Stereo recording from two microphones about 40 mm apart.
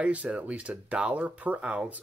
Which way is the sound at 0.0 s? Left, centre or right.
Right.